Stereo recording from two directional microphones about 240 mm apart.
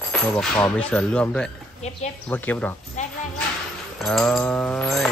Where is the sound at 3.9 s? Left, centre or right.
Centre.